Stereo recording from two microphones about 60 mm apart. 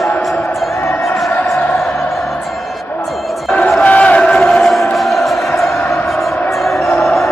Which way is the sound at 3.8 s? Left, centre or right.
Left.